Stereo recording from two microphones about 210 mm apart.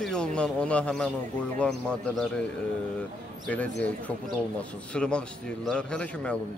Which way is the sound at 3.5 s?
5° left (ahead or behind).